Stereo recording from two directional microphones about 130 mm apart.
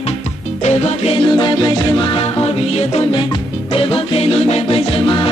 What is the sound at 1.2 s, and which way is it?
Music, 35° left (ahead or behind).